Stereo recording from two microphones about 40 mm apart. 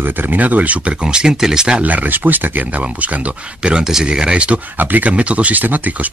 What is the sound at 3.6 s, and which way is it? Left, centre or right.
Speech, right.